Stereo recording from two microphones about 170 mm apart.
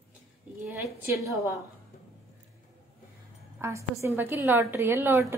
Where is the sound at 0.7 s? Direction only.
15° right (ahead or behind).